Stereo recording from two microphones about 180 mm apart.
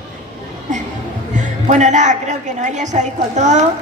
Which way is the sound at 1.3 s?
40° right (ahead or behind).